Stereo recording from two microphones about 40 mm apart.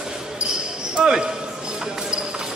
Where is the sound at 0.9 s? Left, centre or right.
Centre.